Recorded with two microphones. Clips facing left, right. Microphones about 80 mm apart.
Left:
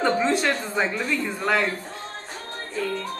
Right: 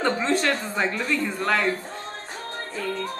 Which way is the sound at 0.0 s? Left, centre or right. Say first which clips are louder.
Left 1 dB; centre.